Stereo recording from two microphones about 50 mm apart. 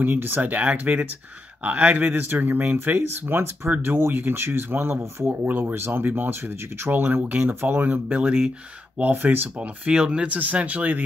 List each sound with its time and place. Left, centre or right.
0.0 s speech: right
8.1 s speech: centre
9.1 s speech: right
9.6 s speech: right